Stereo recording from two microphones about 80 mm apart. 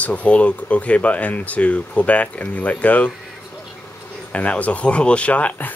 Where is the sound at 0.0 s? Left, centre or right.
Centre.